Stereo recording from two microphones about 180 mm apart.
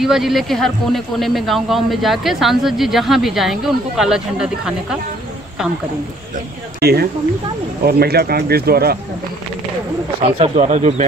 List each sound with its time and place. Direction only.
0.0 s speech: centre (ahead or behind)
6.8 s speech: 60° right (ahead or behind)
10.2 s speech: 35° right (ahead or behind)